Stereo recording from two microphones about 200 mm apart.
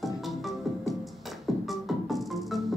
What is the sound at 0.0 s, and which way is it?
Music, centre (ahead or behind).